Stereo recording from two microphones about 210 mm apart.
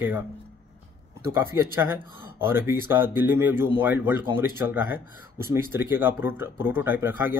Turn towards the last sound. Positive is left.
turn(degrees=-10)  # may be behind; listen again after turning